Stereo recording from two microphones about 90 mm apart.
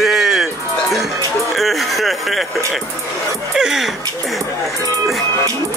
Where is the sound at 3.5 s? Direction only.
5° right (ahead or behind).